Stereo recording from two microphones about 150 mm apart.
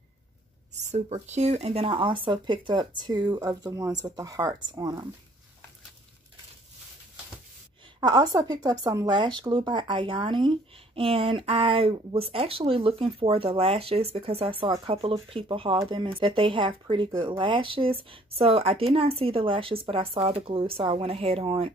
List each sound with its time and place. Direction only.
0.9 s speech: 45° right (ahead or behind); by 5.0 s 25° right (ahead or behind)
8.0 s speech: 25° right (ahead or behind)